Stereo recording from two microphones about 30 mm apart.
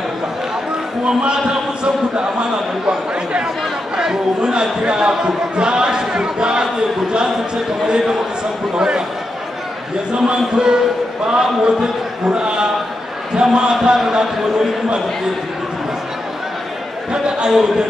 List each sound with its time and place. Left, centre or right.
1.0 s a man's voice: right
8.7 s a man's voice: right
10.1 s a man's voice: right
17.5 s speech: centre